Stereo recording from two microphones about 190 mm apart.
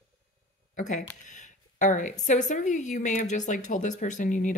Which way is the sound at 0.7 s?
40° left (ahead or behind).